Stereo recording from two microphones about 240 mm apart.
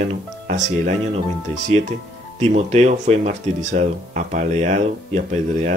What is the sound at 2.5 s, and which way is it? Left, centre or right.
Speech, right.